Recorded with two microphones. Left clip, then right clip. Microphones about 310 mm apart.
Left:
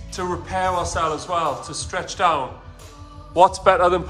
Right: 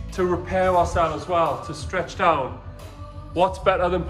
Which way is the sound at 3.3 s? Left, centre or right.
Centre.